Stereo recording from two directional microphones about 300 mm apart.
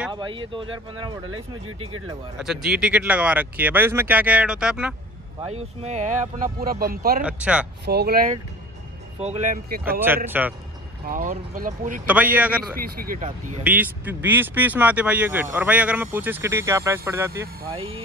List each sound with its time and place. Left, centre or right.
0.1 s speech: centre
2.0 s speech: centre
5.5 s speech: right
7.2 s speech: centre
7.8 s speech: right
9.8 s speech: centre
11.1 s speech: right
12.1 s speech: centre
12.7 s speech: right
13.7 s speech: centre